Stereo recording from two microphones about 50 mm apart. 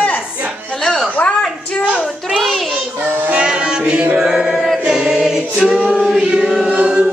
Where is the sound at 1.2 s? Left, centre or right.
Left.